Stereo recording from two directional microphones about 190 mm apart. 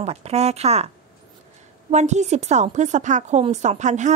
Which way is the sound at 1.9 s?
35° right (ahead or behind).